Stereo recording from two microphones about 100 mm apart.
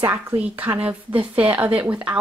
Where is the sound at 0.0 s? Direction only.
15° right (ahead or behind).